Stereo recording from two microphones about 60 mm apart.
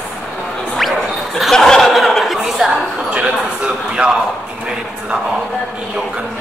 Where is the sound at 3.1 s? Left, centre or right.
Centre.